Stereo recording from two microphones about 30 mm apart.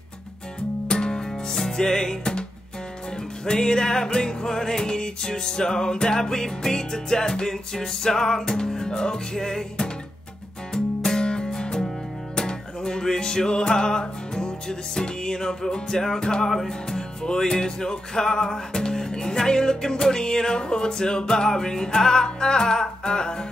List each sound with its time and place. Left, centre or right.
0.8 s music: left
3.4 s music: left
16.4 s music: centre
17.2 s music: centre